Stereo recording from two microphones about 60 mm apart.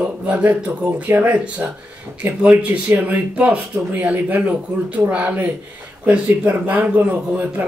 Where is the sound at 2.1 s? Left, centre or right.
Right.